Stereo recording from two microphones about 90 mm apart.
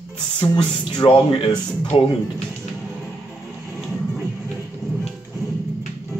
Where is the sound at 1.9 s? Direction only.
75° left (ahead or behind).